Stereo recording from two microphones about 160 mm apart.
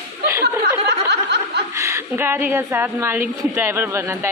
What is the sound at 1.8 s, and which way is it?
A woman's voice, 20° right (ahead or behind).